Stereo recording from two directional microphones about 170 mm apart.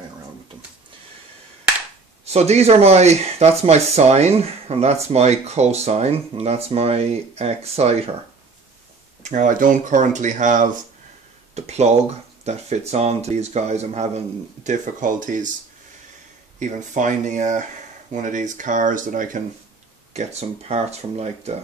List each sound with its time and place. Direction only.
2.2 s speech: 40° right (ahead or behind)
9.2 s speech: 50° right (ahead or behind)
16.5 s speech: 45° right (ahead or behind)
20.1 s speech: 40° right (ahead or behind)